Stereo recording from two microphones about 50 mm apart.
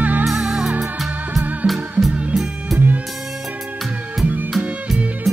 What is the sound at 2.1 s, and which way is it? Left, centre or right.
Music, right.